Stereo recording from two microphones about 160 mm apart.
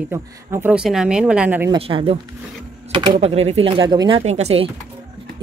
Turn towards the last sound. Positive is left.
turn(degrees=-40)  # may be behind; listen again after turning